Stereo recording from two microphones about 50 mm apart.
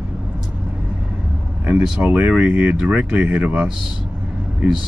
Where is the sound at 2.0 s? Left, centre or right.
Right.